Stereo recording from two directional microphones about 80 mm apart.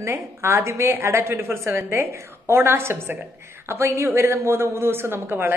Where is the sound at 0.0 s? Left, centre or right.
Right.